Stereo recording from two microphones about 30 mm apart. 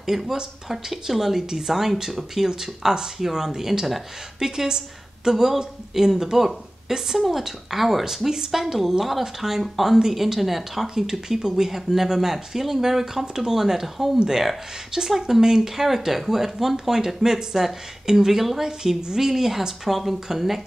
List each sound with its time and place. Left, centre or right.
0.1 s speech: centre
4.5 s a woman's voice: right
5.3 s speech: centre
5.6 s speech: centre